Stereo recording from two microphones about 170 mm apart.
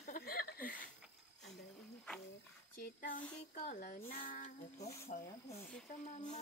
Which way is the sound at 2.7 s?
55° left (ahead or behind).